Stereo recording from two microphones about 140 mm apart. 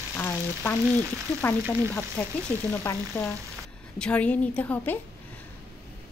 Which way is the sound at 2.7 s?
15° left (ahead or behind).